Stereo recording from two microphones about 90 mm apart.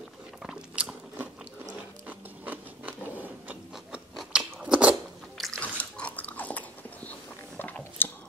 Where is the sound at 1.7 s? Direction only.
20° right (ahead or behind).